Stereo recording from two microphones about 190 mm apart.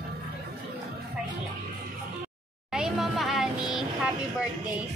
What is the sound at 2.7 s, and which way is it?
Vehicle, centre (ahead or behind).